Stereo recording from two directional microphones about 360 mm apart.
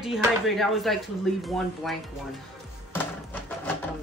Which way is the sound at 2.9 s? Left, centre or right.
Centre.